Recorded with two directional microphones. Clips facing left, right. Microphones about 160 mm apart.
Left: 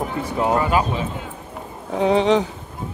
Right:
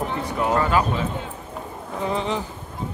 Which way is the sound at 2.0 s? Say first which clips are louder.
Left 9 dB; 85° left.